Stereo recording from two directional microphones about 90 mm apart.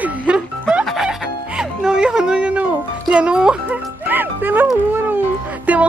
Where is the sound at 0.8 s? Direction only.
5° right (ahead or behind); by 4.6 s 20° right (ahead or behind).